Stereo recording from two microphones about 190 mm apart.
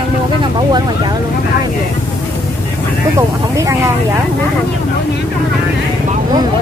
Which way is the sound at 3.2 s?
15° right (ahead or behind).